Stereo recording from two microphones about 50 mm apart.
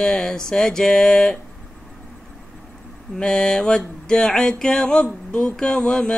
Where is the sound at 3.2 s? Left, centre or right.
Centre.